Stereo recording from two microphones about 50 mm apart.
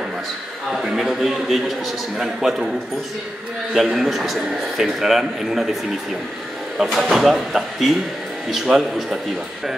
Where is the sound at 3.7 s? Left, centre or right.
Centre.